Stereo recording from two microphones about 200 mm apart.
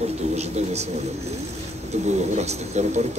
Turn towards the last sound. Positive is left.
turn(degrees=-35)  # may be behind; listen again after turning